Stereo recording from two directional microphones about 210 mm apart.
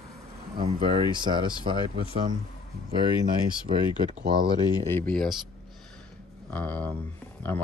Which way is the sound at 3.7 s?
30° right (ahead or behind).